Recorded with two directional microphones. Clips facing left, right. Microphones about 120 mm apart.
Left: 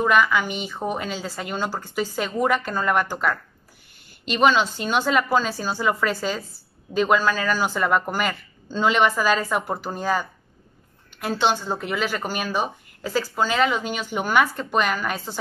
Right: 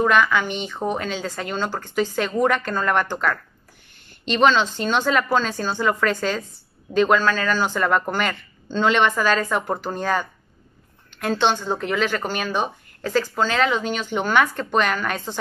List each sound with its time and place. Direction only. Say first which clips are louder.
0.0 s a woman's voice: right 1 dB; 5° left (ahead or behind)